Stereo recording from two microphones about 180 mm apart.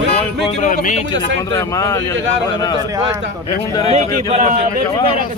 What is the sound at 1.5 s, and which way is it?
Speech, 15° left (ahead or behind).